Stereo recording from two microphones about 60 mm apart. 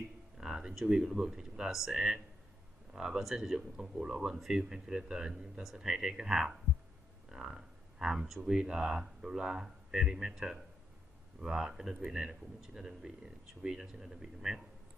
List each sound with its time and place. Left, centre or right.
0.4 s speech: centre